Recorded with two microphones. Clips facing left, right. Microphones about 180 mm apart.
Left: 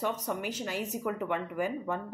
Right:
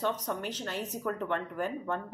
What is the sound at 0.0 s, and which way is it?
Speech, 10° left (ahead or behind).